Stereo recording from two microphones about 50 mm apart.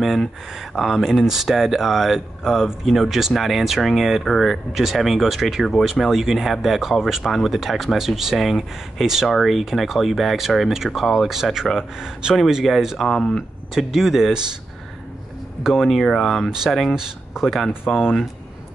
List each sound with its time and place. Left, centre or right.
0.0 s speech: centre
15.6 s speech: centre
16.9 s speech: centre
17.8 s speech: left